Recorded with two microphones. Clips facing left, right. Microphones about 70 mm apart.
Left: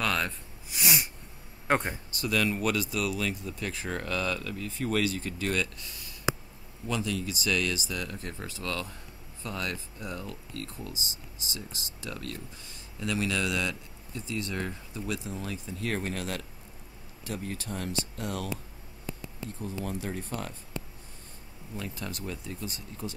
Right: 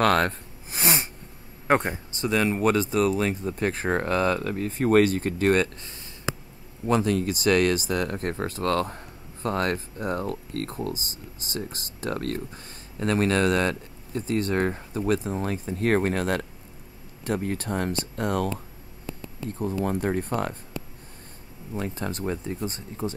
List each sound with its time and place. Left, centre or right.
0.0 s speech: right
6.3 s a sound: left
6.9 s speech: right
19.8 s speech: right
21.7 s speech: right